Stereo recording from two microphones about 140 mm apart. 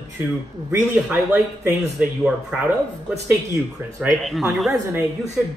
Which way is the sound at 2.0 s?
5° right (ahead or behind).